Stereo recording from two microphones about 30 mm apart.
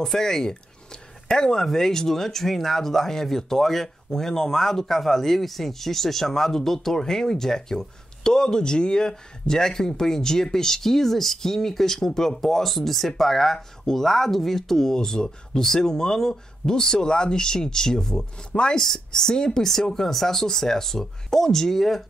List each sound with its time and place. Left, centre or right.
0.0 s speech: centre
18.5 s speech: left
18.8 s speech: centre
19.9 s speech: centre